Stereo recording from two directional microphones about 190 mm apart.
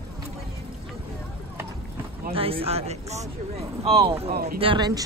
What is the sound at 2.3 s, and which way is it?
Speech, 30° right (ahead or behind).